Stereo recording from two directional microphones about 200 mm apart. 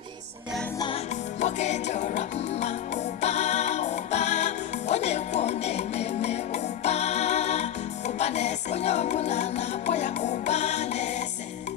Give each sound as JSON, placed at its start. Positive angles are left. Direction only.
{"t": 1.4, "sound": "music", "side_deg": 35}